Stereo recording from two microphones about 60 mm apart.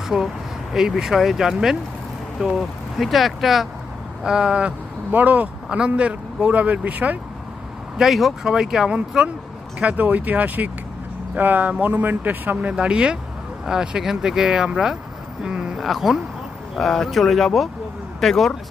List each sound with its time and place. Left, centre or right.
0.1 s speech: centre
5.1 s speech: right
8.0 s speech: centre
9.8 s speech: right
12.7 s speech: centre
15.4 s a sound: centre
15.8 s speech: centre